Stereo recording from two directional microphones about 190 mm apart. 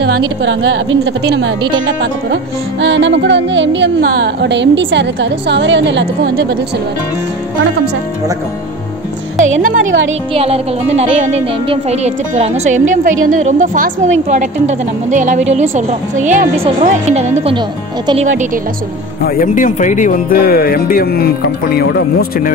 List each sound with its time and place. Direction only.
0.4 s a woman's voice: 80° right; by 1.5 s 65° right (ahead or behind)
2.8 s a woman's voice: 75° right (ahead or behind)
9.4 s speech: 45° right (ahead or behind)
10.3 s a woman's voice: 30° right (ahead or behind)
19.2 s speech: 45° left (ahead or behind)